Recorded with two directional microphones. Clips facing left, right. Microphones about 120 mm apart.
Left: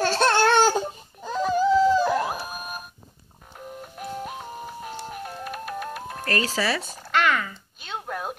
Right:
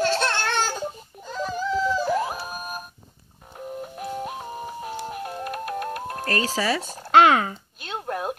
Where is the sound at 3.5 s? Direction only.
5° right (ahead or behind).